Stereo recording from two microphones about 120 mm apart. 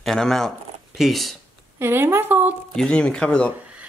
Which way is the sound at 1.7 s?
20° right (ahead or behind).